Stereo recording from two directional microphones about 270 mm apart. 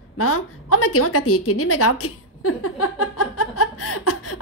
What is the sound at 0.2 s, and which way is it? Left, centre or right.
A woman's voice, left.